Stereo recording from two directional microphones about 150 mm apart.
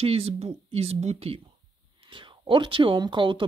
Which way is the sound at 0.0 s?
40° right (ahead or behind).